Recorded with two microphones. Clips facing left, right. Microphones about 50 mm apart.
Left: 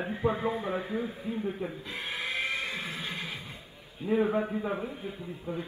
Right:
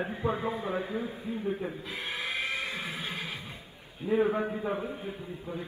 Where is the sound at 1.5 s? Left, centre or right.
Centre.